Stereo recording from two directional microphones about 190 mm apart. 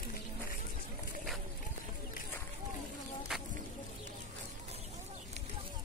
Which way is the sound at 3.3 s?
5° right (ahead or behind).